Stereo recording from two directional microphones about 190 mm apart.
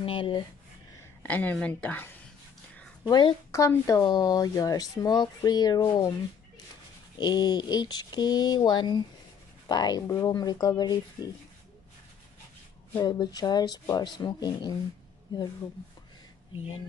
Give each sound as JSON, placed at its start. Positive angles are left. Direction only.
{"t": 0.0, "sound": "speech", "side_deg": 25}
{"t": 0.9, "sound": "a woman's voice", "side_deg": 10}
{"t": 3.1, "sound": "speech", "side_deg": 20}
{"t": 7.2, "sound": "speech", "side_deg": 20}
{"t": 12.9, "sound": "speech", "side_deg": 20}